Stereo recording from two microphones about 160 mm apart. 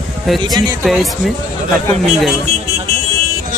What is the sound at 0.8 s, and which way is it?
Speech, centre (ahead or behind).